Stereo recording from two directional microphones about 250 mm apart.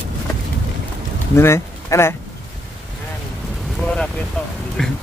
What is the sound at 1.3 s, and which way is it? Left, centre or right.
Speech, centre.